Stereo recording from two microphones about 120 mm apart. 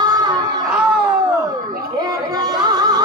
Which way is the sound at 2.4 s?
35° right (ahead or behind).